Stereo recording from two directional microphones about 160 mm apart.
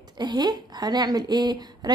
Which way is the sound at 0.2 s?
25° right (ahead or behind).